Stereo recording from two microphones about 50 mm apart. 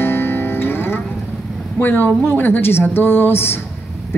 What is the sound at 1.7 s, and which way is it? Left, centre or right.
Speech, left.